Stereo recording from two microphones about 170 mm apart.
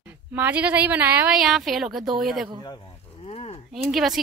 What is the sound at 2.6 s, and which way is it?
Speech, 25° left (ahead or behind).